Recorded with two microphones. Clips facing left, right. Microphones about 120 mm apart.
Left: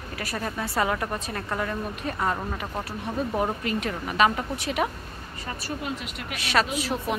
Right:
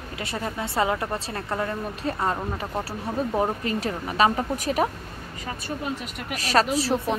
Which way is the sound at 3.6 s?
35° right (ahead or behind).